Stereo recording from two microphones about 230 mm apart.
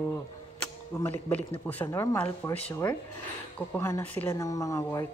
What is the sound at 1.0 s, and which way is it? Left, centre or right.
A man's voice, centre.